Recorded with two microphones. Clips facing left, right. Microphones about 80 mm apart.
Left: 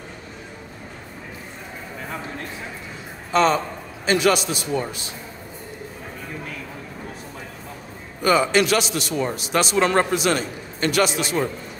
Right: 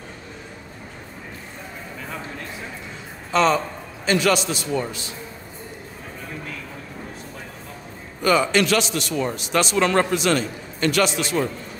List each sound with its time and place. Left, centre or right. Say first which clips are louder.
4.0 s a man's voice: left 1 dB; centre
8.2 s a man's voice: left 1 dB; centre